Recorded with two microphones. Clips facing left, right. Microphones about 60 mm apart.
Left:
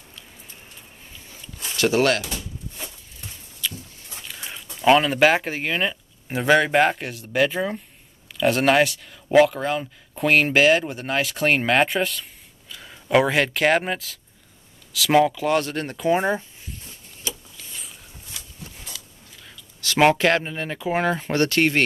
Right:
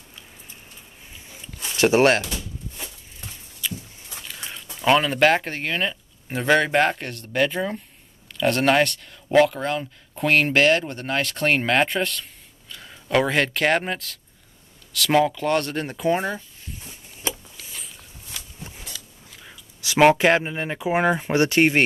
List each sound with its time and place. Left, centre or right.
1.8 s speech: right
3.6 s a sound: centre
4.1 s dog: centre
4.8 s speech: centre
19.4 s speech: centre